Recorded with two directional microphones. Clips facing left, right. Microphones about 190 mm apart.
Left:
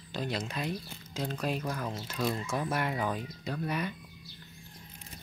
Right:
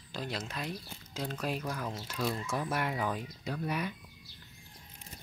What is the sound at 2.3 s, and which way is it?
Speech, 10° left (ahead or behind).